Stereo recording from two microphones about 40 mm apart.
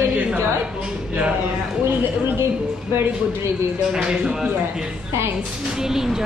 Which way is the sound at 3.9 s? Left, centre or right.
Centre.